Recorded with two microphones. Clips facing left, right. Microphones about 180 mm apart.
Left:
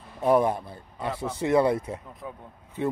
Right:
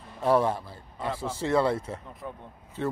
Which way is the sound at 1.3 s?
15° left (ahead or behind).